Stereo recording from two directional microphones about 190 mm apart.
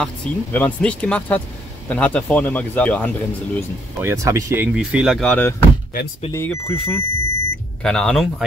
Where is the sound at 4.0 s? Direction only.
15° right (ahead or behind).